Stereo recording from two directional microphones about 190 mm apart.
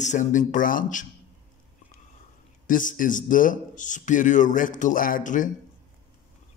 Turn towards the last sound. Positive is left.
turn(degrees=45)  # may be behind; listen again after turning